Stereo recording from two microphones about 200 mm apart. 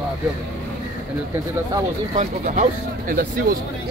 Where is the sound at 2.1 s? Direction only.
40° right (ahead or behind).